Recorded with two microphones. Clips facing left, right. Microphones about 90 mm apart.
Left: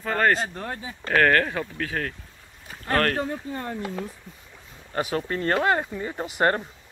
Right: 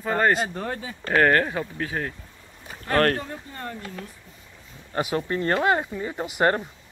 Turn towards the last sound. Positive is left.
turn(degrees=-10)  # may be behind; listen again after turning